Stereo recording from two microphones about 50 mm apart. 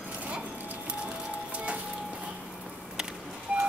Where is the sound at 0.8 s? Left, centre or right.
Right.